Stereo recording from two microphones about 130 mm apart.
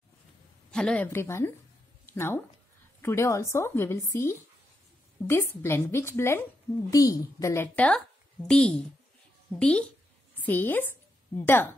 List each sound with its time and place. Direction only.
0.7 s a woman's voice: 5° left (ahead or behind)
1.0 s a woman's voice: 20° left (ahead or behind)